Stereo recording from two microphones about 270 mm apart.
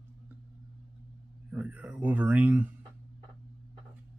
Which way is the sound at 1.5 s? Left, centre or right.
Centre.